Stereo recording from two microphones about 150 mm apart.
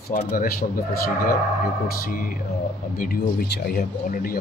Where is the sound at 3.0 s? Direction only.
80° left.